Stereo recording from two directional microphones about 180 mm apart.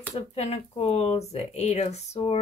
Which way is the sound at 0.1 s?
35° left (ahead or behind).